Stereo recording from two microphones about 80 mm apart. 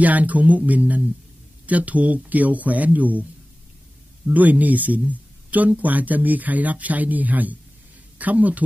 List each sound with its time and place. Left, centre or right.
0.0 s speech: centre
4.3 s speech: centre